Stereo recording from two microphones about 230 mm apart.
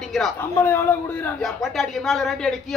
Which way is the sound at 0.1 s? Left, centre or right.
Centre.